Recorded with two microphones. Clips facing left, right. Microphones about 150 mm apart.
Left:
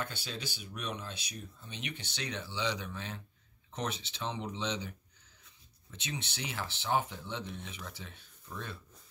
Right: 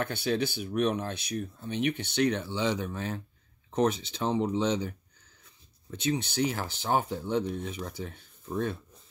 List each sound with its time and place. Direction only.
0.0 s speech: 60° right (ahead or behind)